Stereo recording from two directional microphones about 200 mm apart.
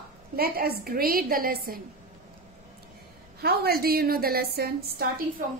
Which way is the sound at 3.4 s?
50° right (ahead or behind).